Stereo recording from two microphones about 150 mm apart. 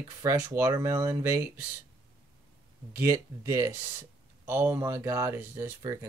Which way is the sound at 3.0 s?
15° right (ahead or behind).